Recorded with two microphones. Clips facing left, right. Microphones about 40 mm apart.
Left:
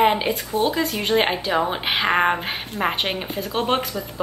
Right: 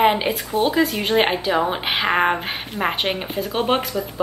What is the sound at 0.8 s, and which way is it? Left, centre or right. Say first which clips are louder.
A woman's voice: right 2 dB; centre.